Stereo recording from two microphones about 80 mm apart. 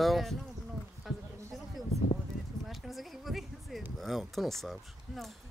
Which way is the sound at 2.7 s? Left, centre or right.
Centre.